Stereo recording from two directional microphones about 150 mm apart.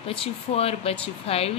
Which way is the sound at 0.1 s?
40° left (ahead or behind).